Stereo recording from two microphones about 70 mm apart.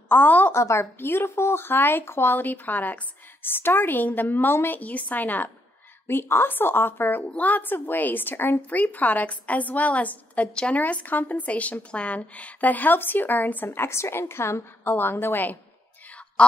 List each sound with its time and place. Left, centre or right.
0.1 s speech: left
0.5 s speech: left
16.4 s quack: centre